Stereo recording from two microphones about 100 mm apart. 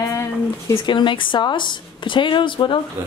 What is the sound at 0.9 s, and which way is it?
Speech, 55° left (ahead or behind).